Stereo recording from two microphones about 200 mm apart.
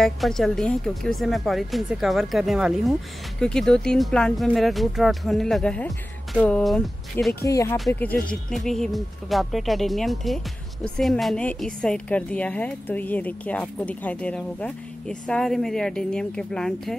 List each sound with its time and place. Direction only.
0.0 s speech: centre (ahead or behind)
7.4 s speech: 15° left (ahead or behind)